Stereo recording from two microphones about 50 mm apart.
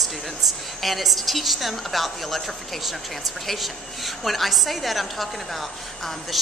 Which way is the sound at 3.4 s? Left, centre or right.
Centre.